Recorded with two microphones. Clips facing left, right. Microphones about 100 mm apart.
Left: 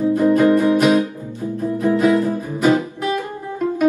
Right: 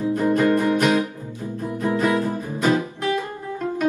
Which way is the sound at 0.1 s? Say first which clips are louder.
Left 4 dB; 15° left (ahead or behind).